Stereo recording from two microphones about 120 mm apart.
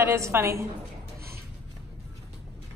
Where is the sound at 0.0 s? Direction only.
25° right (ahead or behind).